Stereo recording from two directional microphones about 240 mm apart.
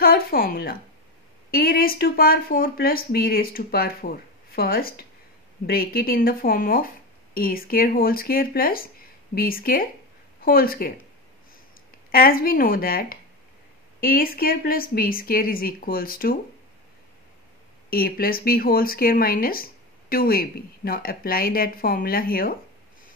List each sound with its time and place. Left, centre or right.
0.0 s speech: left
12.1 s speech: left
17.8 s speech: left